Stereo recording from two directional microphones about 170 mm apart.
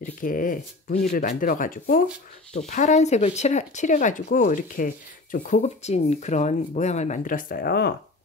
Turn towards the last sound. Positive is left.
turn(degrees=70)  # may be behind; listen again after turning